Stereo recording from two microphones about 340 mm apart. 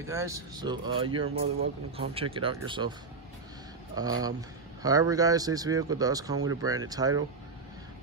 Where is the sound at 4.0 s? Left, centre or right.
Centre.